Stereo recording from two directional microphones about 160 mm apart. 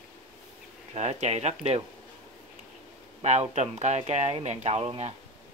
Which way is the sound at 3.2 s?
45° right (ahead or behind).